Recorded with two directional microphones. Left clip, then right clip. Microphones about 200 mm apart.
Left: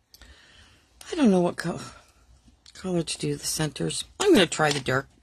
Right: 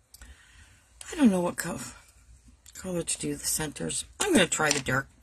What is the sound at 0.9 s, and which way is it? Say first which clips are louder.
Speech: left 3 dB; 40° left (ahead or behind).